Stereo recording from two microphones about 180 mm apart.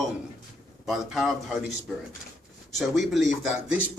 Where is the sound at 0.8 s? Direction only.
Centre (ahead or behind).